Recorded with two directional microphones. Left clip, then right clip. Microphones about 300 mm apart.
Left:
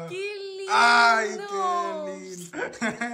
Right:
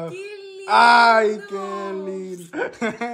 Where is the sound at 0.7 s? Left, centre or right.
Centre.